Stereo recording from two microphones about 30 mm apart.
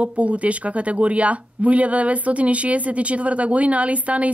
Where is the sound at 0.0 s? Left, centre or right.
Right.